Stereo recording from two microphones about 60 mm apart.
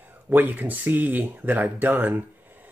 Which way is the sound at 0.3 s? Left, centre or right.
Right.